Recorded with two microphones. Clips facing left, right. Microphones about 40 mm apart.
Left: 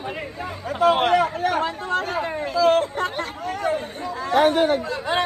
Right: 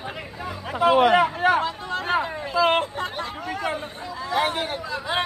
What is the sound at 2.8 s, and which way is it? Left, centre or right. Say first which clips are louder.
Speech: left 3 dB; left.